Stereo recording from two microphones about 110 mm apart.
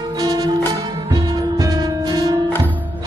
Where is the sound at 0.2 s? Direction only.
35° right (ahead or behind).